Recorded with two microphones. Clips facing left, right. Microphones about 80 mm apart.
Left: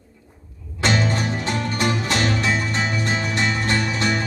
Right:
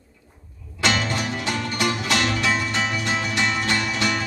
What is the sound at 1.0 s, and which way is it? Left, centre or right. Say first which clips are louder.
Music: left 2 dB; left.